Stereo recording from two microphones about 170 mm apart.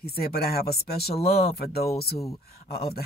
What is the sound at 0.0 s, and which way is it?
Speech, 65° left (ahead or behind).